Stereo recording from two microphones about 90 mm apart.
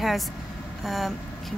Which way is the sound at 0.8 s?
Centre (ahead or behind).